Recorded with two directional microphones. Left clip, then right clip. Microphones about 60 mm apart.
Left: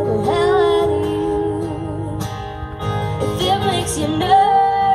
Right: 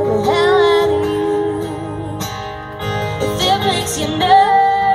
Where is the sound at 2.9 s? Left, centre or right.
Right.